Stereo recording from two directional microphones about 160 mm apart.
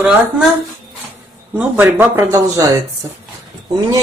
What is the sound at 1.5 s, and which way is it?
Speech, 10° right (ahead or behind).